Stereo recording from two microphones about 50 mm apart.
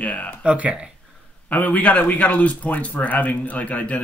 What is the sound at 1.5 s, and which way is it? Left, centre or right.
Speech, left.